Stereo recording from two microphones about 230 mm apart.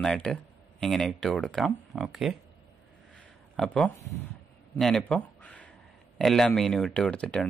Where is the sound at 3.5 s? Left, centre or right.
Centre.